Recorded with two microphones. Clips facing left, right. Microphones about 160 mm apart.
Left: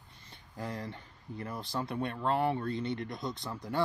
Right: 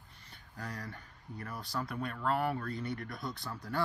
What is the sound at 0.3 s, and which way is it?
Speech, 25° left (ahead or behind).